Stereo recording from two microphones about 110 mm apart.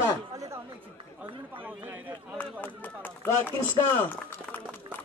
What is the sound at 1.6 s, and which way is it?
Speech, 15° right (ahead or behind).